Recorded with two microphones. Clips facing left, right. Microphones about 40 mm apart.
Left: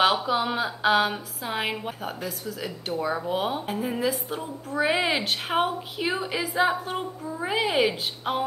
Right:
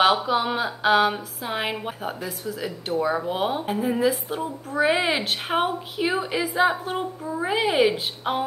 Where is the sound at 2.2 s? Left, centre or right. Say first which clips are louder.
Right 2 dB; right.